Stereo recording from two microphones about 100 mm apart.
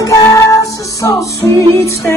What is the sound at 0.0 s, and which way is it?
Music, 35° left (ahead or behind).